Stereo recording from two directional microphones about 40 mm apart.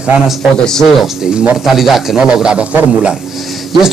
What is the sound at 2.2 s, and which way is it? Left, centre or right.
Speech, right.